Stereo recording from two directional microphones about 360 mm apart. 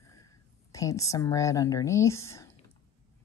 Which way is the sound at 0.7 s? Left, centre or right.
Centre.